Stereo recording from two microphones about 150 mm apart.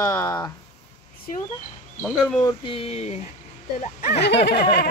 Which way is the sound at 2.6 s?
35° left (ahead or behind).